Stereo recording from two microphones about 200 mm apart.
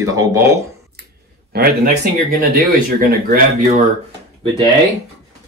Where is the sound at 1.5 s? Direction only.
50° right (ahead or behind).